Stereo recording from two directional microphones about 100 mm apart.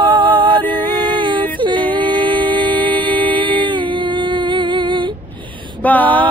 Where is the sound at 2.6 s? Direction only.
15° left (ahead or behind).